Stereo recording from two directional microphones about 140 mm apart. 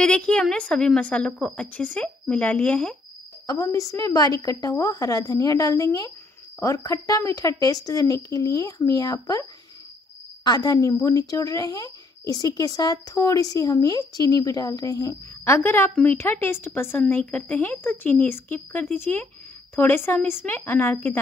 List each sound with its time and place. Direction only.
0.0 s a woman's voice: 10° left (ahead or behind)
3.4 s a woman's voice: 20° left (ahead or behind)